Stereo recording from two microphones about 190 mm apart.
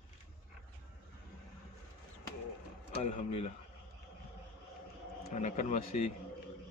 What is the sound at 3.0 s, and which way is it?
Speech, 35° left (ahead or behind).